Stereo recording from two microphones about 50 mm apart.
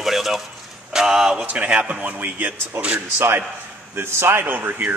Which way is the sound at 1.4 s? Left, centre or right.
Right.